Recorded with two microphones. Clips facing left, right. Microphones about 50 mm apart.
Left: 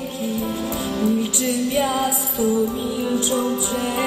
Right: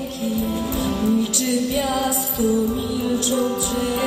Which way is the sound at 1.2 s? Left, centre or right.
Centre.